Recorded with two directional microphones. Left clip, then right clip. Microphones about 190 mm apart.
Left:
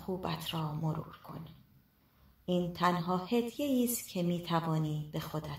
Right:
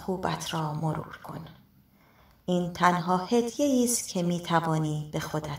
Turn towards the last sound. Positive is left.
turn(degrees=-25)  # may be behind; listen again after turning